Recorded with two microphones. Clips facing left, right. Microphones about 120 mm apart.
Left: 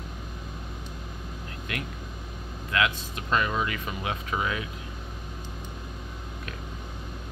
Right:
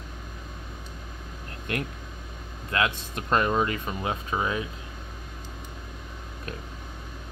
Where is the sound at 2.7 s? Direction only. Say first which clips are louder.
Even; 35° right (ahead or behind).